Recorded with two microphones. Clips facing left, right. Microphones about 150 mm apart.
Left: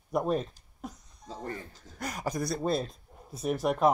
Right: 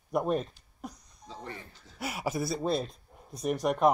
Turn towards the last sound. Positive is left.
turn(degrees=0)  # may be behind; listen again after turning